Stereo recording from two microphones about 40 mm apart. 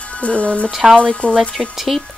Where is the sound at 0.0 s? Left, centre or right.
Left.